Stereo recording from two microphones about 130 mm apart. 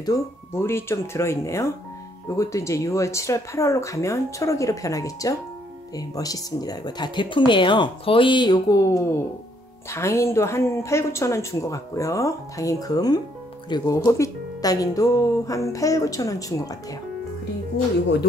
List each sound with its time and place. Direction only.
0.0 s speech: 25° left (ahead or behind)